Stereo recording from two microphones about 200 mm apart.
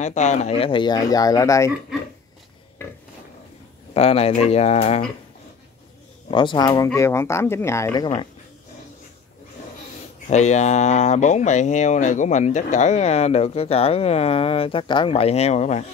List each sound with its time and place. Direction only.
0.0 s speech: 35° left (ahead or behind); by 1.7 s 15° left (ahead or behind)
3.9 s speech: 30° left (ahead or behind)
6.3 s speech: 25° left (ahead or behind)
10.2 s speech: 35° left (ahead or behind)